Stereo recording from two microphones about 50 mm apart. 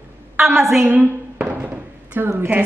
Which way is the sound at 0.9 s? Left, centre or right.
Right.